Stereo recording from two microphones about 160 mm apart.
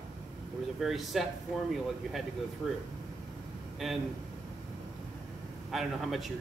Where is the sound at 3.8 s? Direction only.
Centre (ahead or behind).